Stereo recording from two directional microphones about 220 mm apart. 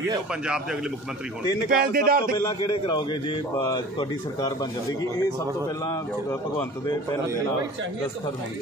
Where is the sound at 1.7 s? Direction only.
40° right (ahead or behind).